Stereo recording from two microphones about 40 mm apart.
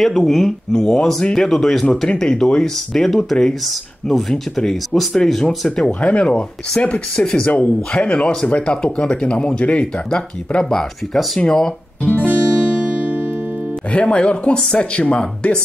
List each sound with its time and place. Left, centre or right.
0.2 s speech: centre
5.9 s speech: left
6.8 s guitar: left
7.2 s speech: centre
7.4 s speech: left
11.3 s speech: centre
12.0 s guitar: left
12.3 s music: right
14.0 s speech: left